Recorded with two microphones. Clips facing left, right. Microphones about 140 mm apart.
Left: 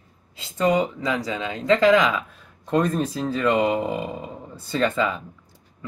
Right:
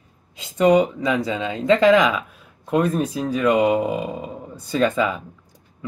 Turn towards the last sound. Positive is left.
turn(degrees=-15)  # may be behind; listen again after turning